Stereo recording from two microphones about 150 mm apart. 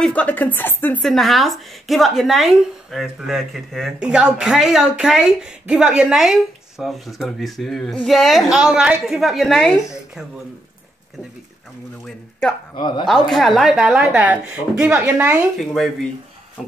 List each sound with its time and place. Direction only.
0.0 s a woman's voice: 10° left (ahead or behind)
1.0 s speech: centre (ahead or behind)
12.7 s speech: 30° left (ahead or behind)
13.0 s a woman's voice: centre (ahead or behind)
15.5 s speech: centre (ahead or behind)